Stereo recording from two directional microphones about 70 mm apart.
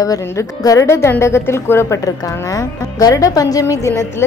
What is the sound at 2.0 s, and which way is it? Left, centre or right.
A woman's voice, left.